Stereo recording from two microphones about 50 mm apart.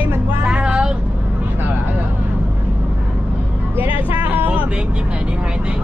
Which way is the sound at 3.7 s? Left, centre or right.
Right.